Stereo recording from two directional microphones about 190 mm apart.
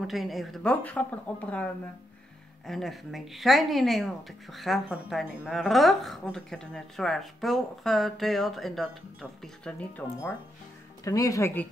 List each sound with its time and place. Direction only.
0.0 s a woman's voice: centre (ahead or behind); by 11.6 s 15° left (ahead or behind)